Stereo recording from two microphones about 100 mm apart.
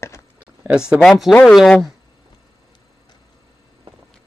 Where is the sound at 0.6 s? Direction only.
10° right (ahead or behind).